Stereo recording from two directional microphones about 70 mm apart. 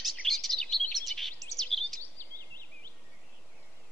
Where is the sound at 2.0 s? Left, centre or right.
Left.